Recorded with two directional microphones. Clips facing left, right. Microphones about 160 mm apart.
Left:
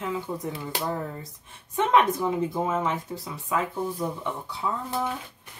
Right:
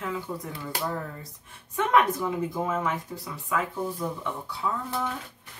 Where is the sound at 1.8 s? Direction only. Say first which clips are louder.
Left 1 dB; 25° left (ahead or behind).